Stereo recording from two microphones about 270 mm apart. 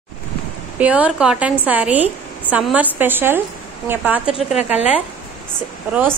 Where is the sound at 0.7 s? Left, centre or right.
Centre.